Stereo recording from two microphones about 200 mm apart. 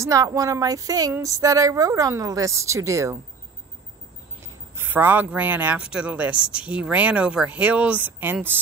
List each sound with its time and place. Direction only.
0.0 s speech: 15° right (ahead or behind)
4.7 s speech: 10° right (ahead or behind)